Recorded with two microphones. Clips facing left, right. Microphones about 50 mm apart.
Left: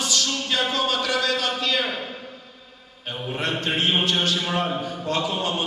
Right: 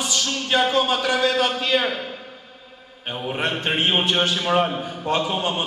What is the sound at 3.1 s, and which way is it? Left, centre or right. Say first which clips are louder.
Speech: right 2 dB; right.